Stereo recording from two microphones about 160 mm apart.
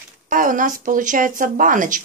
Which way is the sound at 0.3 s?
55° right (ahead or behind).